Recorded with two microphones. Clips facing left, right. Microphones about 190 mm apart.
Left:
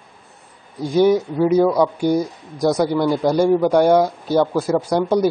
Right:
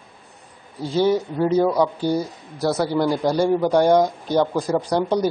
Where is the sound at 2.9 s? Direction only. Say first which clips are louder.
Left 2 dB; 10° right (ahead or behind).